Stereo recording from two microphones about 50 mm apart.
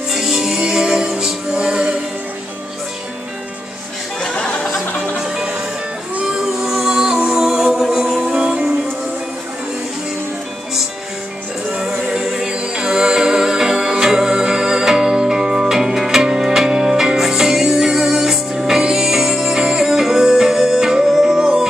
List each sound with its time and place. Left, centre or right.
0.1 s music: centre
4.2 s music: centre
4.6 s music: centre
6.3 s music: centre
11.7 s music: centre